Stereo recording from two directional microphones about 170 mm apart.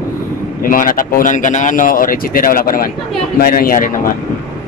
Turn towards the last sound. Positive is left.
turn(degrees=55)  # may be behind; listen again after turning